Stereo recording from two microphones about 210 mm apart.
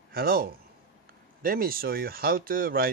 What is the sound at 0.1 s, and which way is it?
Speech, 45° right (ahead or behind).